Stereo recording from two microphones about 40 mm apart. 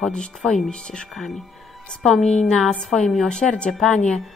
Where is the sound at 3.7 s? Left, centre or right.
Centre.